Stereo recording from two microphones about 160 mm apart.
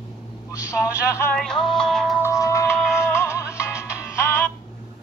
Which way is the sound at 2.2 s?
20° left (ahead or behind).